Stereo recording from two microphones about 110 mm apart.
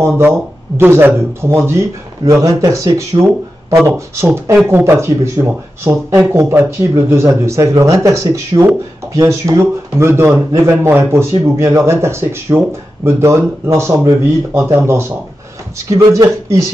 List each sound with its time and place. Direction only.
0.0 s a man's voice: 20° right (ahead or behind)
3.1 s speech: 45° right (ahead or behind)
3.7 s a man's voice: 25° right (ahead or behind)